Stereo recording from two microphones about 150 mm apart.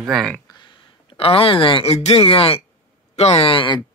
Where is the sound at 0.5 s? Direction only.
35° left (ahead or behind).